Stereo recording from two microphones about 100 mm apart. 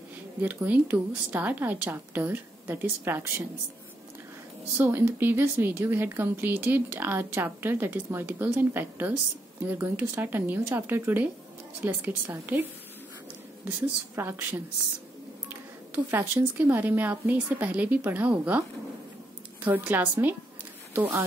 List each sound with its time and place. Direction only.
0.4 s speech: 15° right (ahead or behind)
4.7 s speech: 20° right (ahead or behind)
14.1 s a woman's voice: 20° right (ahead or behind)
19.6 s a woman's voice: 15° right (ahead or behind)